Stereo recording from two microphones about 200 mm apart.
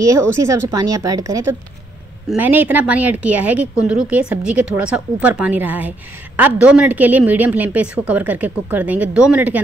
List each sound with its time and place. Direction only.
0.0 s a woman's voice: 15° right (ahead or behind)